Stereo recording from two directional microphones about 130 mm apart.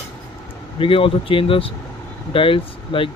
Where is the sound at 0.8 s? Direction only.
45° left (ahead or behind).